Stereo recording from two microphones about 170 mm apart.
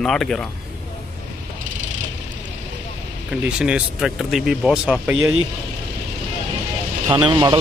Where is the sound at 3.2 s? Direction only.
5° right (ahead or behind).